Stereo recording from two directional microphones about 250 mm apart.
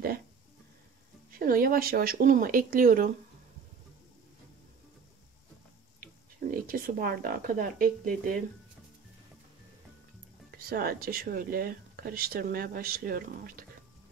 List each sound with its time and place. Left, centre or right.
1.4 s speech: right
6.5 s speech: right
10.7 s speech: right